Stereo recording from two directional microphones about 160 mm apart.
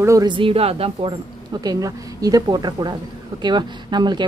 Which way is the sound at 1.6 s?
25° right (ahead or behind).